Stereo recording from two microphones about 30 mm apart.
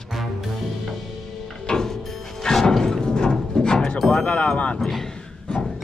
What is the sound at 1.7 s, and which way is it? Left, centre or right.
Music, centre.